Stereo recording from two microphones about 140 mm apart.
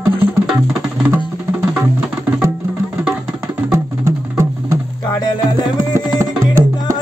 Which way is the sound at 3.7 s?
20° right (ahead or behind).